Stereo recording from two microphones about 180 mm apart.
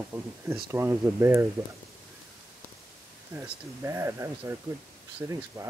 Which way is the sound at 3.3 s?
15° right (ahead or behind).